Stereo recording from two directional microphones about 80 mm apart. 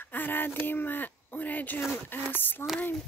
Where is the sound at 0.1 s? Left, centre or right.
Left.